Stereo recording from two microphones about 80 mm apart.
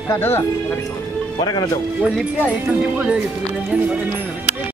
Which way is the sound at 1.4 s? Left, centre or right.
Left.